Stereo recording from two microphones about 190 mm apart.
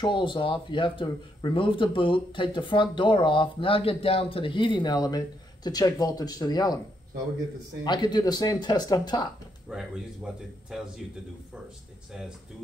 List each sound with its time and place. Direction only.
0.0 s speech: 25° left (ahead or behind)
7.8 s speech: 20° left (ahead or behind)
9.7 s a man's voice: 5° right (ahead or behind)
12.1 s a man's voice: 5° right (ahead or behind)